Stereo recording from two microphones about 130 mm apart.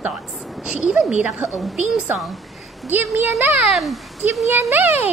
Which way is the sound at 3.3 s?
20° right (ahead or behind).